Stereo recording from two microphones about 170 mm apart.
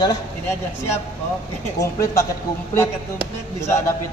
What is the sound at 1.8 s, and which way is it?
Speech, 20° left (ahead or behind).